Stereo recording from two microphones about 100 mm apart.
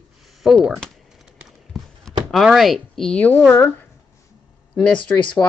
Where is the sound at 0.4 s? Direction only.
5° right (ahead or behind).